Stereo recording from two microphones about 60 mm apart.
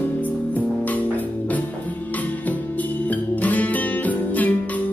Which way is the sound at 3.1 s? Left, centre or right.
Left.